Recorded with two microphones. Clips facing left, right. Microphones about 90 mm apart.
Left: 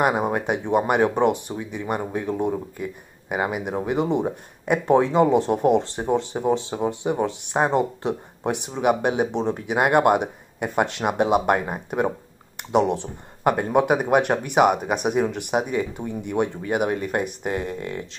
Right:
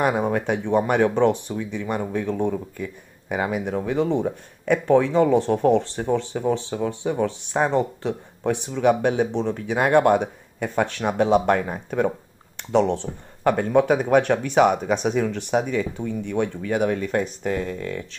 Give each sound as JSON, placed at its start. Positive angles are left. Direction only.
{"t": 0.0, "sound": "speech", "side_deg": 15}